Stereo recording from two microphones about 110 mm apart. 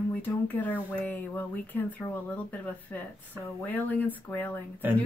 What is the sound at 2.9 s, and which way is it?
Speech, 15° left (ahead or behind).